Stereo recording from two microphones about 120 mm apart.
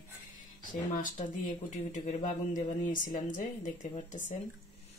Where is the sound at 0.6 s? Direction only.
90° left.